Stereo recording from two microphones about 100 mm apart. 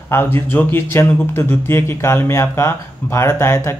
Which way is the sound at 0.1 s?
20° left (ahead or behind).